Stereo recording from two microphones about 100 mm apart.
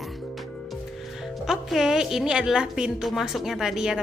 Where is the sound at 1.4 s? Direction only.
5° right (ahead or behind).